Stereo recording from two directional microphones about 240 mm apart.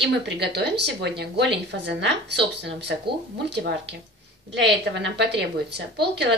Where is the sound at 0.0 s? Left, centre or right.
Right.